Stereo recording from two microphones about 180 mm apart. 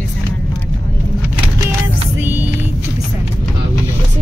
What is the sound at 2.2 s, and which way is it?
Vehicle, 10° right (ahead or behind).